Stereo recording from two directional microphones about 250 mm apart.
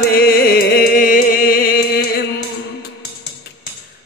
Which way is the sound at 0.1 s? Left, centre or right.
Left.